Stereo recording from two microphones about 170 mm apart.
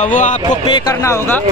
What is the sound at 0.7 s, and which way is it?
Speech, 25° left (ahead or behind).